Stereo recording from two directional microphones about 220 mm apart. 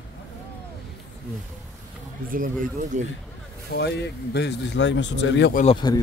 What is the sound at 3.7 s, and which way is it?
Speech, 50° left (ahead or behind).